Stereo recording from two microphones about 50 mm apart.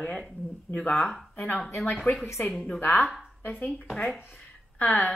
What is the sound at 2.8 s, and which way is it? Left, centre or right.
Speech, left.